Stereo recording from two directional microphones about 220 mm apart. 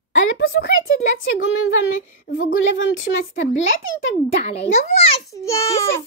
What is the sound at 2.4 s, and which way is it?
Speech, 65° left (ahead or behind).